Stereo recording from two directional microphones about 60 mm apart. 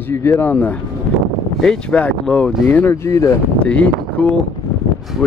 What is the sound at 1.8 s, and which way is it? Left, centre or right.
Speech, centre.